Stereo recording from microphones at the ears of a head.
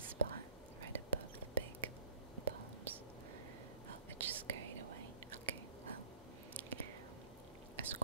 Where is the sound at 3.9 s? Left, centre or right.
Right.